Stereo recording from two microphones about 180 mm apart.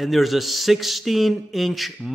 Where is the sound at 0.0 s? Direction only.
Centre (ahead or behind).